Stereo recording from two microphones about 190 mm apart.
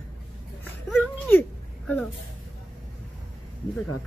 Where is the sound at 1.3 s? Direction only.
10° left (ahead or behind).